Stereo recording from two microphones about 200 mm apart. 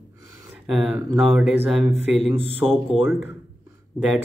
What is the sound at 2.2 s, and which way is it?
Speech, 30° right (ahead or behind).